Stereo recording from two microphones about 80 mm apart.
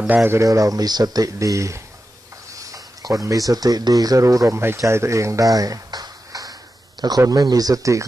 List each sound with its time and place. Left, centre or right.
0.0 s speech: right
0.4 s speech: right